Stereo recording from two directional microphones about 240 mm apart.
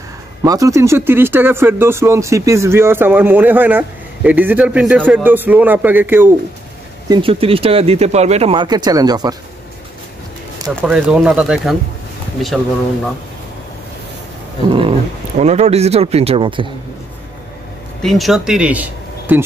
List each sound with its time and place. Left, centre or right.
0.4 s speech: centre
7.1 s speech: right
10.8 s speech: centre
14.7 s speech: right
18.0 s speech: centre